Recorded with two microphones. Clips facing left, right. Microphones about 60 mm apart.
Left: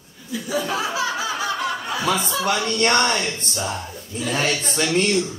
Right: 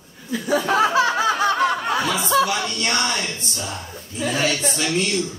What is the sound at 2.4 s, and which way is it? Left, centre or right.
A man's voice, left.